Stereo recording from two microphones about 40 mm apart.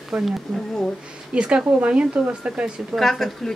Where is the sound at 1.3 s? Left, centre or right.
Right.